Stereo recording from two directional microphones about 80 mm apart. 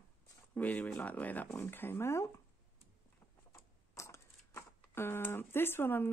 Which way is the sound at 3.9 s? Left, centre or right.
Left.